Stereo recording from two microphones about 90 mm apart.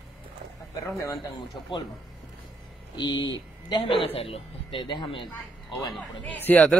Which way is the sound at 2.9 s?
60° left (ahead or behind).